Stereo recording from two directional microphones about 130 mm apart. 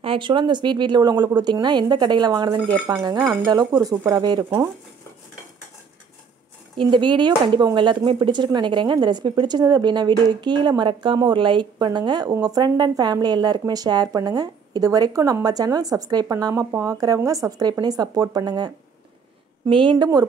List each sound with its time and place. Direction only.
0.0 s speech: 40° right (ahead or behind)
6.8 s speech: 40° right (ahead or behind)